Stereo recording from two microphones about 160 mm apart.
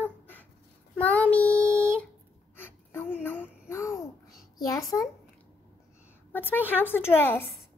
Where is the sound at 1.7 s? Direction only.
15° right (ahead or behind).